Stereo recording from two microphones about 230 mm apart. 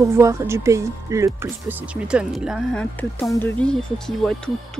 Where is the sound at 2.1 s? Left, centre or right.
Centre.